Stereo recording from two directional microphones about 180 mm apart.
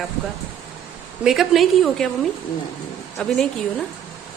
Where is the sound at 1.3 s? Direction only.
Centre (ahead or behind).